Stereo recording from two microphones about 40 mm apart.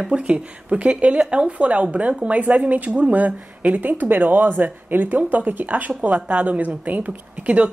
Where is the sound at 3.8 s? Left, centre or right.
Right.